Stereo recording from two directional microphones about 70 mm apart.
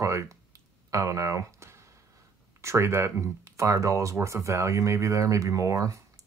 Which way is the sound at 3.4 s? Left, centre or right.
Right.